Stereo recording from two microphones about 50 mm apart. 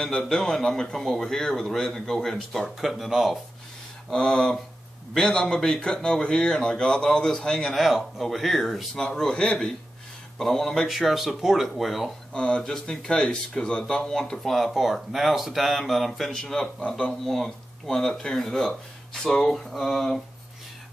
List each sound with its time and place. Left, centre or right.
0.0 s speech: centre
2.8 s speech: centre
4.1 s speech: centre
7.7 s speech: centre
8.9 s speech: centre
12.4 s speech: centre
14.5 s speech: centre